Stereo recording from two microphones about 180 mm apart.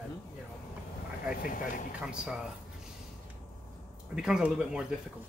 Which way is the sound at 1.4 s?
50° left (ahead or behind).